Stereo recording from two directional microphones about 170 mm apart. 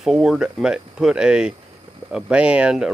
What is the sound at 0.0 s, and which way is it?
Speech, centre (ahead or behind).